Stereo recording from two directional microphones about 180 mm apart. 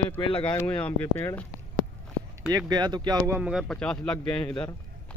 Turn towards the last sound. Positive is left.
turn(degrees=30)  # may be behind; listen again after turning